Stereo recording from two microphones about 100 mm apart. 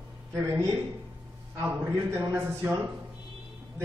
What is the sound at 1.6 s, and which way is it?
A man's voice, 25° right (ahead or behind).